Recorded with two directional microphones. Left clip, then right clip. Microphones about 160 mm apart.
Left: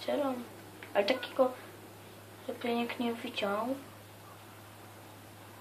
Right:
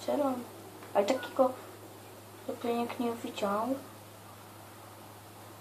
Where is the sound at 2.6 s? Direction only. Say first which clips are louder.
Right 1 dB; 25° left (ahead or behind).